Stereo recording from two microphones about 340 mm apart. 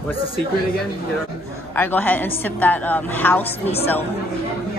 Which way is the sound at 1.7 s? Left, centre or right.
Centre.